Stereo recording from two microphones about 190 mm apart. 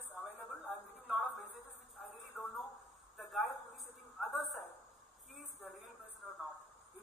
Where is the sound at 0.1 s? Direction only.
5° right (ahead or behind).